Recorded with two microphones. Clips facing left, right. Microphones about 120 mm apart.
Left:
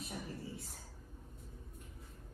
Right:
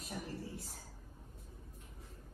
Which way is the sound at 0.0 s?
Centre (ahead or behind).